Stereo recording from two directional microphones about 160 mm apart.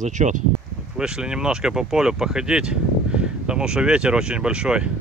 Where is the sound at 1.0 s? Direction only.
5° right (ahead or behind).